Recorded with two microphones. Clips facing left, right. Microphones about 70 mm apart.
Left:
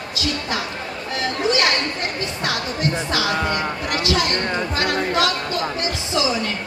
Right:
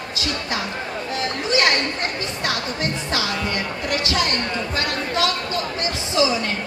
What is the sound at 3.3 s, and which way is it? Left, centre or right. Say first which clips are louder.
Music: left 3 dB; left.